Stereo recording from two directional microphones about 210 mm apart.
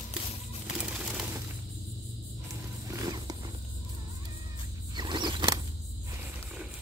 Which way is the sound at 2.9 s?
20° right (ahead or behind).